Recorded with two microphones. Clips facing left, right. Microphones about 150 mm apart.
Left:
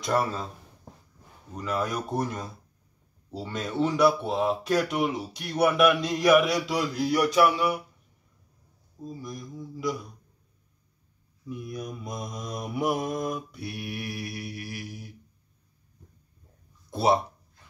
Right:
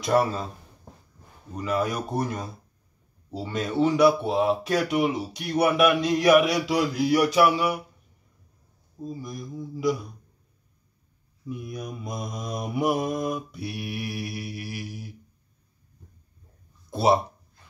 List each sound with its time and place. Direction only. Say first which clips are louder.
0.0 s speech: right 4 dB; 10° right (ahead or behind)
1.6 s speech: right 3 dB; 5° right (ahead or behind)
9.0 s mantra: right 3 dB; 5° right (ahead or behind)
11.4 s speech: right 1 dB; 10° right (ahead or behind)
13.5 s mantra: right 2 dB; 5° right (ahead or behind)
16.9 s speech: right 2 dB; 5° right (ahead or behind)